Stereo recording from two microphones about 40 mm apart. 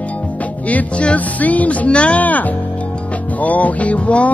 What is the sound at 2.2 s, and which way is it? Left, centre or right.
Speech, left.